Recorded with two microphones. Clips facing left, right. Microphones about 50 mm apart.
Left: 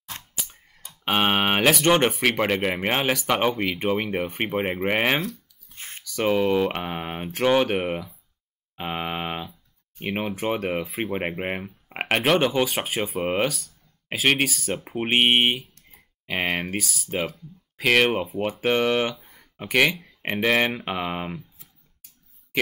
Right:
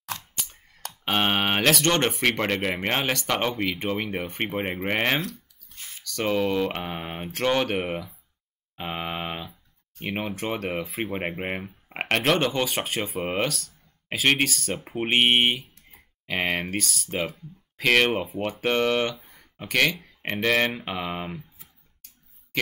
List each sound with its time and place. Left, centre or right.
0.1 s a sound: left
1.0 s speech: centre
5.8 s a sound: left
6.0 s speech: centre
8.7 s mantra: centre
9.9 s speech: centre
19.5 s speech: centre